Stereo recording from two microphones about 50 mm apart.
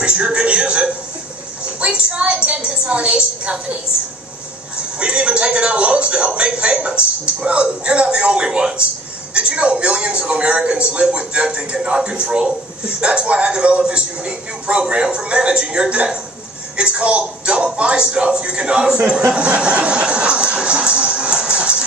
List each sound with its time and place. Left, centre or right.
0.0 s a sound: centre
1.8 s speech: right
4.9 s speech: right